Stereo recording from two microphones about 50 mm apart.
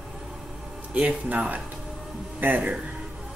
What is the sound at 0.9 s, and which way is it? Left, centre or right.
Speech, right.